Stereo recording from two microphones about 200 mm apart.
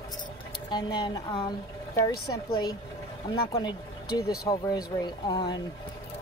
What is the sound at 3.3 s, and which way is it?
Speech, 25° left (ahead or behind).